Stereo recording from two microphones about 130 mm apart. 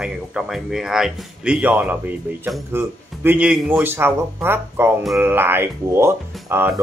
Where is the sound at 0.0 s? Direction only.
5° right (ahead or behind).